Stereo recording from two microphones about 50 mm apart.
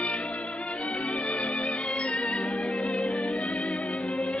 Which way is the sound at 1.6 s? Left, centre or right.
Centre.